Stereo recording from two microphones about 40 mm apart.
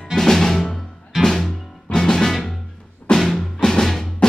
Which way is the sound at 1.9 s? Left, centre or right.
Centre.